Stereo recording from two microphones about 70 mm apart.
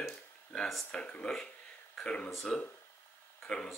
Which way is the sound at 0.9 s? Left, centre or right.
Centre.